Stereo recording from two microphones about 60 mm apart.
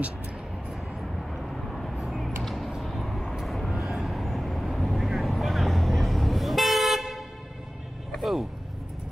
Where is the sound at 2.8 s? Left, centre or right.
Centre.